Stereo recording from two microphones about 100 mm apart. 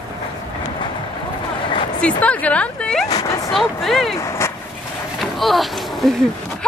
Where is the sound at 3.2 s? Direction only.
35° left (ahead or behind).